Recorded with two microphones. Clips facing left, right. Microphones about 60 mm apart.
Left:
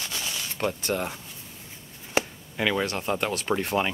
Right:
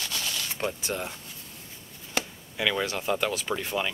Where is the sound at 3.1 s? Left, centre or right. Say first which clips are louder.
Even; left.